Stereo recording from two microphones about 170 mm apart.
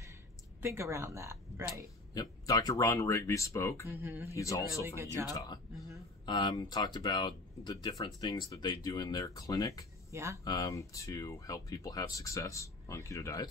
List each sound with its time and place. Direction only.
0.6 s a woman's voice: 15° right (ahead or behind)
2.1 s speech: 20° left (ahead or behind)
3.8 s a woman's voice: 15° right (ahead or behind)
4.3 s speech: 20° left (ahead or behind)
4.8 s a woman's voice: 15° right (ahead or behind)
5.2 s speech: 20° left (ahead or behind)
10.1 s a woman's voice: 15° right (ahead or behind)
10.4 s speech: 20° left (ahead or behind)